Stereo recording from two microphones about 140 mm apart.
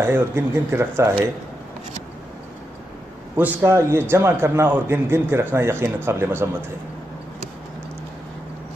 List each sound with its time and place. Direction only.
0.0 s a man's voice: 15° right (ahead or behind)
3.3 s a man's voice: 15° right (ahead or behind)